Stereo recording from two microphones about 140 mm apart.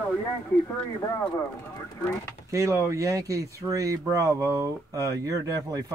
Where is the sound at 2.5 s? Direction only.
20° right (ahead or behind).